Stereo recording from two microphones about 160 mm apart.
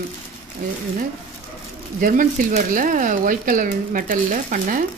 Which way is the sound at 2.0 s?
60° right (ahead or behind).